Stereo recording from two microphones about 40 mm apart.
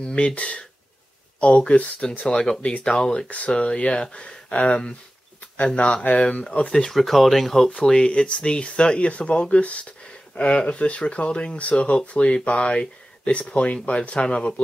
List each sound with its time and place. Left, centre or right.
0.0 s speech: left
6.2 s speech: centre
7.0 s speech: centre
8.1 s speech: left